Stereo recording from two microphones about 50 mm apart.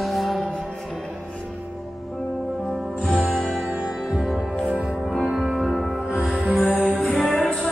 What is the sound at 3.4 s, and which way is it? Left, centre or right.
Music, centre.